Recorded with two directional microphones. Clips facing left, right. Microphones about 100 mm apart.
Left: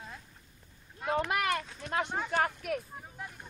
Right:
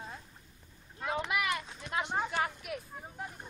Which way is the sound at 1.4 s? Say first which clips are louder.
Left 3 dB; 35° left (ahead or behind).